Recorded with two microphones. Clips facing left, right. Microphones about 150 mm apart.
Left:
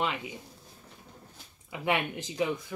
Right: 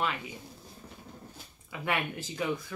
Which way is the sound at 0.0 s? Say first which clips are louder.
Left 1 dB; 20° left (ahead or behind).